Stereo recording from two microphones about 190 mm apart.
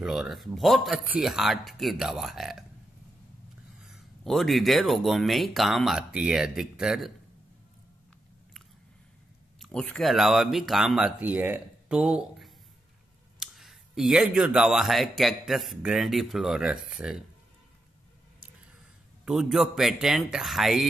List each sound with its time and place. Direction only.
0.0 s speech: centre (ahead or behind)
3.8 s speech: centre (ahead or behind)
9.6 s speech: 5° left (ahead or behind)
19.2 s speech: centre (ahead or behind)